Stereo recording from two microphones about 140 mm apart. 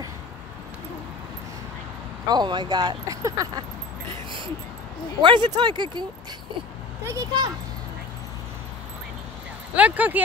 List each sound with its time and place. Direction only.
2.2 s speech: 30° right (ahead or behind)
5.2 s speech: 35° right (ahead or behind)
7.1 s speech: 20° right (ahead or behind)
9.8 s speech: 10° right (ahead or behind)